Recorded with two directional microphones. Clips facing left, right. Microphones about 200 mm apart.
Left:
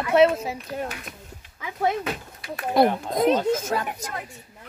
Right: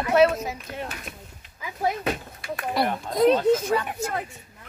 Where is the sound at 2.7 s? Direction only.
50° left (ahead or behind).